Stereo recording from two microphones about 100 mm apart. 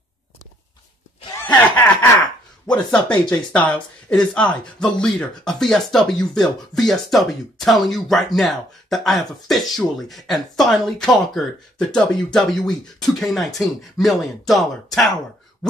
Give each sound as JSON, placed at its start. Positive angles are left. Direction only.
{"t": 1.4, "sound": "snicker", "side_deg": 15}
{"t": 2.6, "sound": "speech", "side_deg": 10}